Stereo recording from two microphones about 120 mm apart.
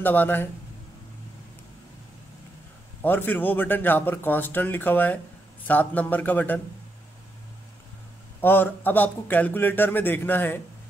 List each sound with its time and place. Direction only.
0.0 s speech: 15° left (ahead or behind)
3.0 s speech: 15° left (ahead or behind)
8.4 s speech: 15° left (ahead or behind)